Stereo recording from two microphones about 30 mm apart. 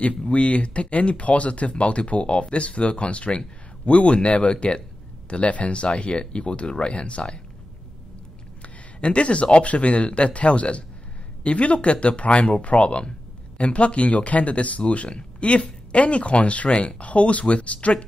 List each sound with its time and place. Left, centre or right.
0.3 s speech: left
8.6 s speech: left